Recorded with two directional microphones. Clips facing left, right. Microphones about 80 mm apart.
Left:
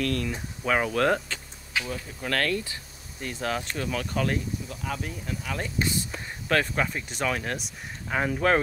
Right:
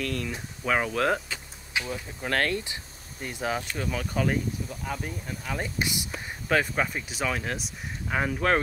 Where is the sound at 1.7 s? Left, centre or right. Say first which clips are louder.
Even; right.